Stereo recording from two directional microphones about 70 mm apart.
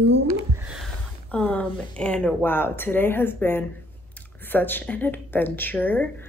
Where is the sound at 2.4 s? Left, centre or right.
Left.